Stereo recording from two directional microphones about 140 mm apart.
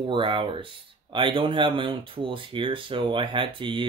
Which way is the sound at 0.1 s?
35° right (ahead or behind).